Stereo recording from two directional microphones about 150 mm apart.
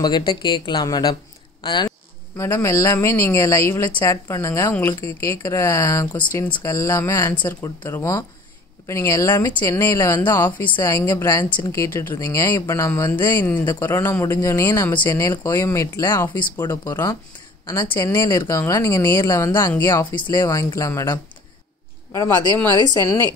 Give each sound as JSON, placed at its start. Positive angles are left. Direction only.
{"t": 0.0, "sound": "speech", "side_deg": 30}
{"t": 2.3, "sound": "speech", "side_deg": 20}